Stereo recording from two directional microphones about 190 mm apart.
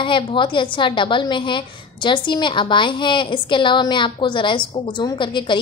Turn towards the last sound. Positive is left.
turn(degrees=25)  # may be behind; listen again after turning